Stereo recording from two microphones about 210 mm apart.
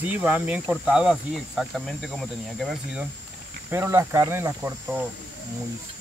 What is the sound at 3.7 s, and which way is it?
Speech, 10° right (ahead or behind).